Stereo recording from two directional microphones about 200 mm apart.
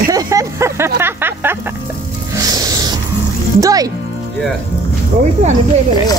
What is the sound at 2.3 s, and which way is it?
Music, 20° right (ahead or behind).